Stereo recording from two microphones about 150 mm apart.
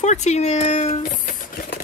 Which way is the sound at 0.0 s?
50° left (ahead or behind).